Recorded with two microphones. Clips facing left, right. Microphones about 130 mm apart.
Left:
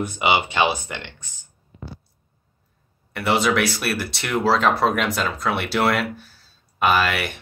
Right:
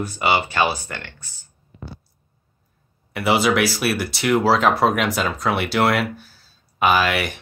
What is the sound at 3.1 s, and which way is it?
Speech, 5° right (ahead or behind).